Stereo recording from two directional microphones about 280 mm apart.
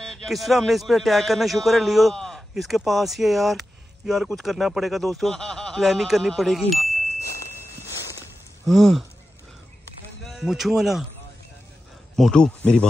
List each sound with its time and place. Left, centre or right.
0.0 s speech: centre
8.6 s speech: centre
10.2 s speech: centre
12.2 s speech: centre